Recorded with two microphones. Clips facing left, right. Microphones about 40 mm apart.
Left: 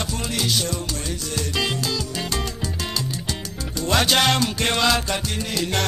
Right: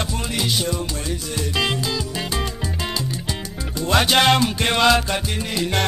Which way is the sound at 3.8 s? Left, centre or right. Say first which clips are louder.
Right 3 dB; centre.